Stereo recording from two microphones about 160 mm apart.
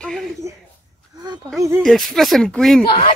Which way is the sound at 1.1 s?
25° right (ahead or behind).